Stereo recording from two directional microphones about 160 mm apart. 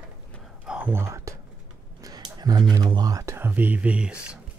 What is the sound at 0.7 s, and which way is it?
Whispering, 10° right (ahead or behind).